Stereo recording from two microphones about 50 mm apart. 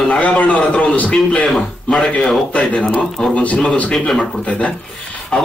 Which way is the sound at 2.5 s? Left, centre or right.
Left.